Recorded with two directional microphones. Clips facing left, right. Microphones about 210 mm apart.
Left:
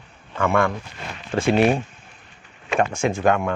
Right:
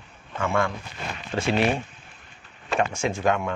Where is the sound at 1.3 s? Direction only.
50° left (ahead or behind).